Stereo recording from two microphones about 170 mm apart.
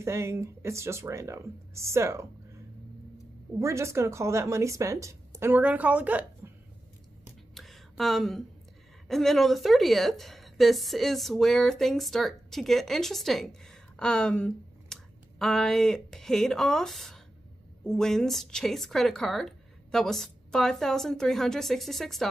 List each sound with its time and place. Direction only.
0.0 s speech: 15° right (ahead or behind)
3.5 s speech: 15° right (ahead or behind)
7.5 s a sound: centre (ahead or behind)
9.0 s a woman's voice: centre (ahead or behind)